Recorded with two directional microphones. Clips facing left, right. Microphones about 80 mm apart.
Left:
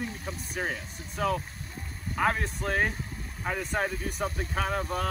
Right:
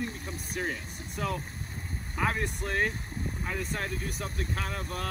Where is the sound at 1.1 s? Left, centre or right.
Centre.